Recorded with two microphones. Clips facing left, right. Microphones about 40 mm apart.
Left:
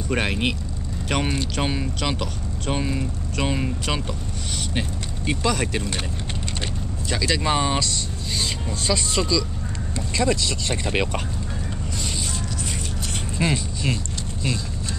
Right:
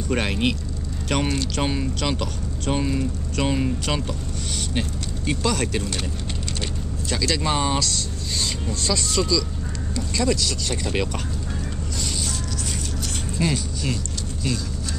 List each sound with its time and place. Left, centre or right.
0.1 s speech: centre
7.1 s speech: centre
13.4 s speech: left